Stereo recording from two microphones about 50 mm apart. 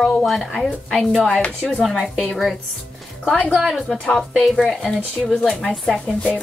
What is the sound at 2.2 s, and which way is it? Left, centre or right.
Speech, centre.